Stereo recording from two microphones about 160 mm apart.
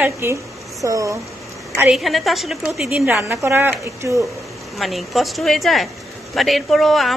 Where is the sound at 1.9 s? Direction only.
Centre (ahead or behind); by 4.2 s 15° right (ahead or behind).